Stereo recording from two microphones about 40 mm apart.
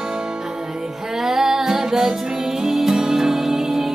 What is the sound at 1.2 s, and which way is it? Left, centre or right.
Music, centre.